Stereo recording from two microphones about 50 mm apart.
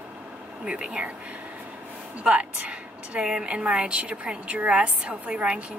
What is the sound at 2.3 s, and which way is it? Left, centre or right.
Speech, right.